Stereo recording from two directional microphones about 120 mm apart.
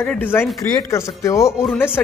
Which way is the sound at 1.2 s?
25° left (ahead or behind).